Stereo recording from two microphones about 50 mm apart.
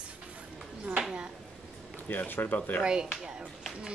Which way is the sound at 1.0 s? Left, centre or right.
Centre.